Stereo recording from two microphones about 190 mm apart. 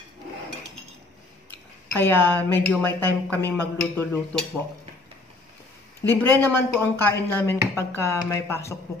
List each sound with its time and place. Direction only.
1.9 s a woman's voice: 10° left (ahead or behind)
6.0 s a woman's voice: 15° left (ahead or behind)